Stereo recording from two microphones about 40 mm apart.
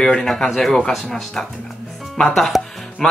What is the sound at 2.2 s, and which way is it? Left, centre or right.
Music, centre.